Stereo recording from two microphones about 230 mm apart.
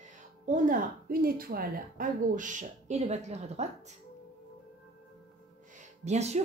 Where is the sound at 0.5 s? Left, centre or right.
Right.